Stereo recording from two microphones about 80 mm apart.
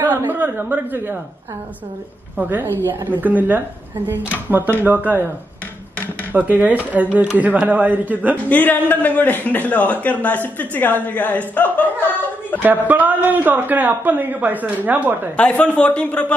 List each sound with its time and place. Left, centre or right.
0.0 s a man's voice: right
2.3 s a man's voice: right
6.3 s a man's voice: right
8.5 s a man's voice: left
12.5 s a man's voice: right
15.3 s speech: centre